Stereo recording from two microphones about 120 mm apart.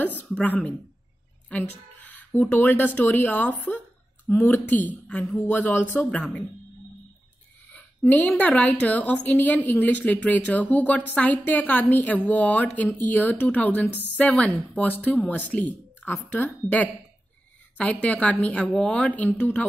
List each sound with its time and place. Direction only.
0.3 s a woman's voice: 10° left (ahead or behind)
1.5 s a sound: 15° left (ahead or behind)
2.5 s a woman's voice: 15° left (ahead or behind)
7.7 s a woman's voice: 15° left (ahead or behind)